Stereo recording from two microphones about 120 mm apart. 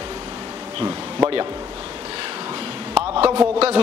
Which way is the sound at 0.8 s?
25° right (ahead or behind).